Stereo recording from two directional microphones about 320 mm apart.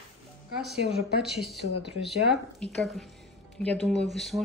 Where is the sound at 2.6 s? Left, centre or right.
Centre.